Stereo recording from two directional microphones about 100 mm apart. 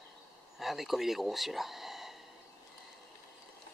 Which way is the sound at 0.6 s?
Centre (ahead or behind).